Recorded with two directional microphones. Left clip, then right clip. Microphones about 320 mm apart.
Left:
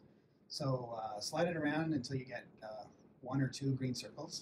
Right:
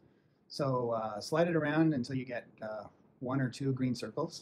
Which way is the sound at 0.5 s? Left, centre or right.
Right.